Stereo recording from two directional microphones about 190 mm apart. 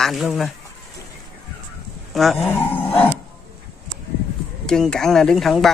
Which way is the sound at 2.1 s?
Centre (ahead or behind).